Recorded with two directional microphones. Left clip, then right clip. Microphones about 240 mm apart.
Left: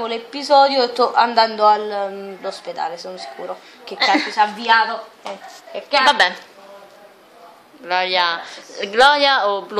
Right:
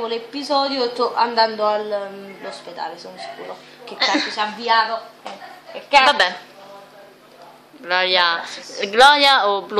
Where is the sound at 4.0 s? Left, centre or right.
Centre.